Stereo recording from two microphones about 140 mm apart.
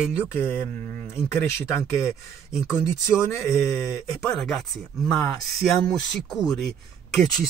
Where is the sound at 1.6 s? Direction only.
20° left (ahead or behind).